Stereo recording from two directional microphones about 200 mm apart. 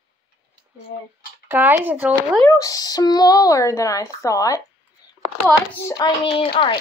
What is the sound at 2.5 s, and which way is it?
Speech, 15° left (ahead or behind).